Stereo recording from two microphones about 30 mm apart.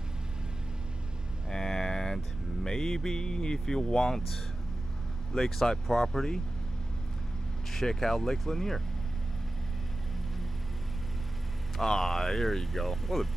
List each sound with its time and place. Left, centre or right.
1.5 s a sound: centre
3.5 s speech: centre
5.3 s speech: centre
7.7 s speech: centre
11.7 s speech: centre